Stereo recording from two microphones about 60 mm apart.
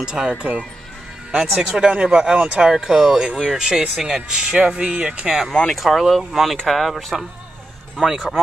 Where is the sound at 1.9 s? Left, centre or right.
Centre.